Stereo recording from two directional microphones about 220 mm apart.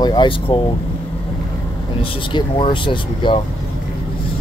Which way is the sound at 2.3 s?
20° left (ahead or behind).